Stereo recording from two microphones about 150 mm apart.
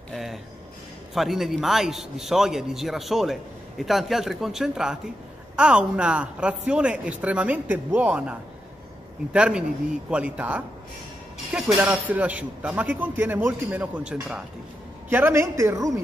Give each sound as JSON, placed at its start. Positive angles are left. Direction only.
{"t": 0.1, "sound": "a man's voice", "side_deg": 0}